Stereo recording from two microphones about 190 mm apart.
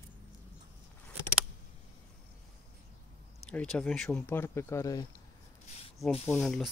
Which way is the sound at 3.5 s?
5° left (ahead or behind).